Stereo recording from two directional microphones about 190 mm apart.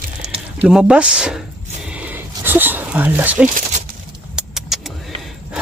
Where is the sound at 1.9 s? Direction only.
10° right (ahead or behind).